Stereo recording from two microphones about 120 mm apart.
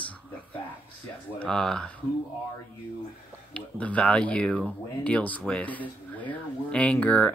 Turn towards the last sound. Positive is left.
turn(degrees=10)  # may be behind; listen again after turning